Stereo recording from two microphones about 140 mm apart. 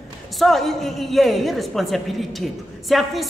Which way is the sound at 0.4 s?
Centre (ahead or behind).